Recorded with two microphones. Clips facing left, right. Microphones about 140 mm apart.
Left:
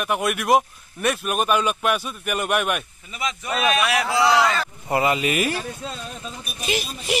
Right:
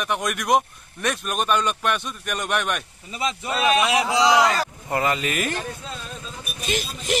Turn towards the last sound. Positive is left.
turn(degrees=5)  # may be behind; listen again after turning